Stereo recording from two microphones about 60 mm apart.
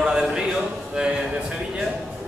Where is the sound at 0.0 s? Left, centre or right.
Centre.